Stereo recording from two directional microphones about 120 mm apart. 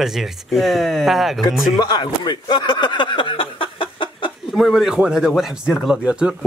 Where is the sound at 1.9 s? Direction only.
35° left (ahead or behind).